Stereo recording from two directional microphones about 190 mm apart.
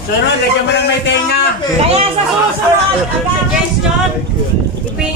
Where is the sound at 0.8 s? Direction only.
65° left (ahead or behind).